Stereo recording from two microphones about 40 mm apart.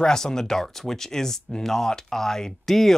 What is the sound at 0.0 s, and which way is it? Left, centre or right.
Speech, centre.